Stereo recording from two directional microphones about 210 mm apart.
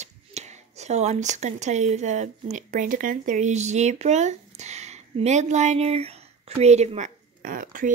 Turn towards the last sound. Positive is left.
turn(degrees=-40)  # may be behind; listen again after turning